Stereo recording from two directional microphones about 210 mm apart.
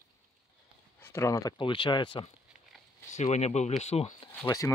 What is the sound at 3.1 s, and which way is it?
Speech, 35° left (ahead or behind).